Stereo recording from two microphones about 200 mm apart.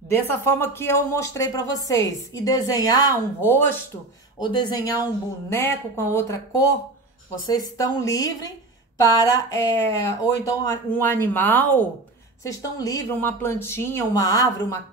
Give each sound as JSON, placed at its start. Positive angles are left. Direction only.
{"t": 0.1, "sound": "speech", "side_deg": 10}
{"t": 4.4, "sound": "a woman's voice", "side_deg": 20}